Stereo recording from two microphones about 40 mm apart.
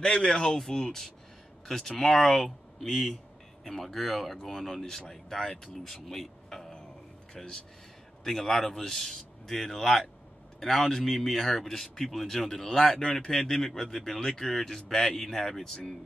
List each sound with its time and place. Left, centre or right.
0.0 s speech: left
0.3 s speech: centre
8.2 s speech: centre